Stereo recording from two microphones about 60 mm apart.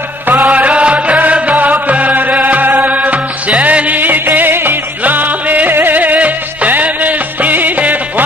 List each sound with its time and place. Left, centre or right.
0.4 s music: right